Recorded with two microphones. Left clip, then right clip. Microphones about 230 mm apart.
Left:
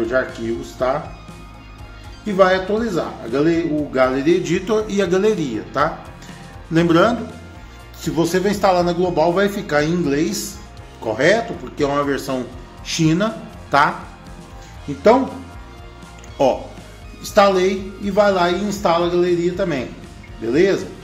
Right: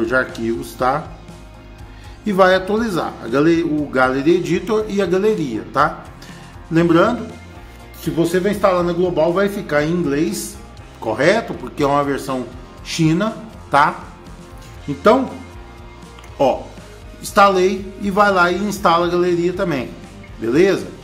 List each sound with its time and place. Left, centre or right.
2.2 s a man's voice: right; by 13.9 s centre
16.4 s a man's voice: centre